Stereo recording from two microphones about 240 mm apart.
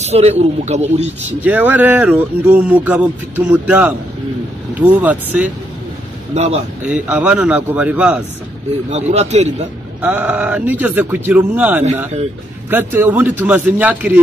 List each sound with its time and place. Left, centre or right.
0.0 s speech: right
1.4 s speech: centre
6.3 s speech: right
6.8 s a man's voice: centre
8.9 s speech: right
10.0 s speech: centre